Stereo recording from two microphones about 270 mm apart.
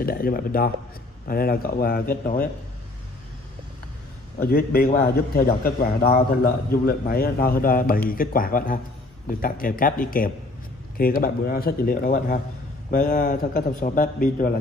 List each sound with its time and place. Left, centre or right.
0.0 s a man's voice: left
4.4 s a man's voice: left